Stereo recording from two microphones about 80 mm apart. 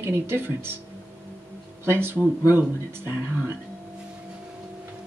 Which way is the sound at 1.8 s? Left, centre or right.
Right.